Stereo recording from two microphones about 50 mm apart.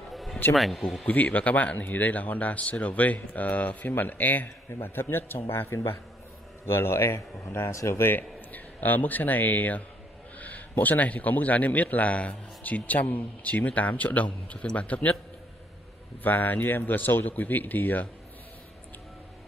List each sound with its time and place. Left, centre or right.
0.1 s a sound: centre
0.6 s speech: centre
1.0 s a man's voice: left
8.1 s a man's voice: left
16.2 s speech: left